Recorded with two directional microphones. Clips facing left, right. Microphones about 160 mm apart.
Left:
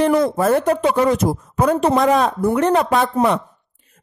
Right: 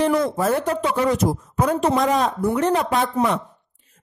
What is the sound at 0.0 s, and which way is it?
A man's voice, 60° left (ahead or behind).